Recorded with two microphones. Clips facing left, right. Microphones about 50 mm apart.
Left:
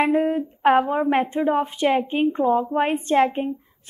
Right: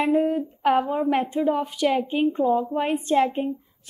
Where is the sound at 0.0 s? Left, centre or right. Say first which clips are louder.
Left 1 dB; left.